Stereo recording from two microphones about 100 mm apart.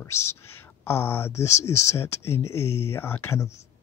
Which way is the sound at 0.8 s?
25° left (ahead or behind).